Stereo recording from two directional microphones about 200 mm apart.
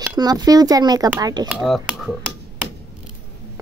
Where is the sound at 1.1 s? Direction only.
15° right (ahead or behind).